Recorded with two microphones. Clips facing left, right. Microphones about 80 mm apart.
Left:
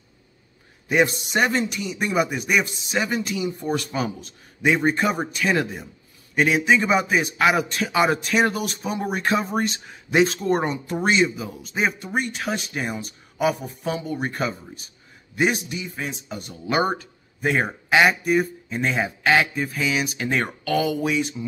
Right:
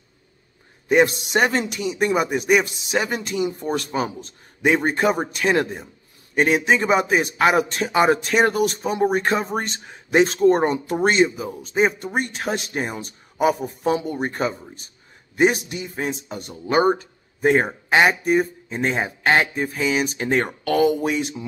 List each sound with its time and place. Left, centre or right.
1.3 s a man's voice: right
11.2 s speech: right
15.3 s a man's voice: right
16.6 s speech: right
17.4 s a man's voice: right